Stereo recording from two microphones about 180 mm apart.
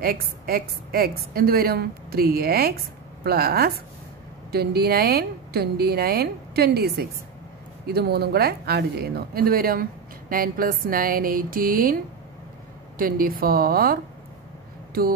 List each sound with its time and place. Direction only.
0.0 s a woman's voice: 55° right (ahead or behind)